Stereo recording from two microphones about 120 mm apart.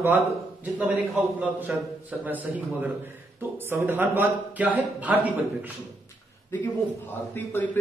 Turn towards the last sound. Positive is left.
turn(degrees=15)  # may be behind; listen again after turning